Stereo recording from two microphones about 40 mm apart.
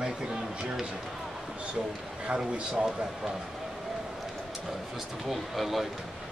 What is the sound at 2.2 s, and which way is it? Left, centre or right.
Speech, right.